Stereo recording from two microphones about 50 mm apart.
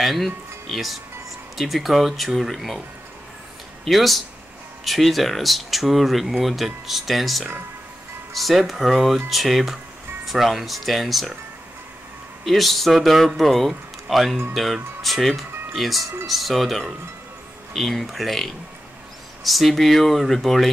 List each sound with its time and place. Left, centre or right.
0.0 s speech: centre
3.8 s speech: centre
12.4 s speech: centre